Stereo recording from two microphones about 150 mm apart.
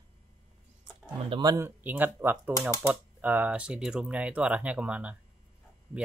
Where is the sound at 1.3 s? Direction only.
25° right (ahead or behind).